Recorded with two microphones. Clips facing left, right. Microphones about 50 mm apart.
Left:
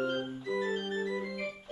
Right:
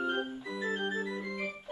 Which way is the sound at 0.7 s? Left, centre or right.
Right.